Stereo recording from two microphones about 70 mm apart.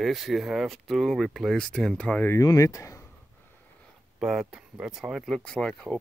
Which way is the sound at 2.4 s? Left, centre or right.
Left.